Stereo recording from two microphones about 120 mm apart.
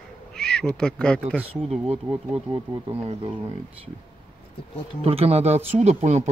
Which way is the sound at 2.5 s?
45° right (ahead or behind).